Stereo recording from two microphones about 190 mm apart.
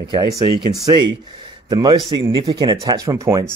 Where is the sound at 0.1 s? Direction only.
20° right (ahead or behind).